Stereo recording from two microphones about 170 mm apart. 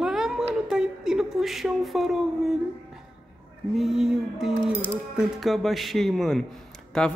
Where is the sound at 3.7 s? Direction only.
Centre (ahead or behind).